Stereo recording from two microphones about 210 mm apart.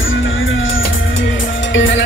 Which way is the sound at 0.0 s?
70° left (ahead or behind).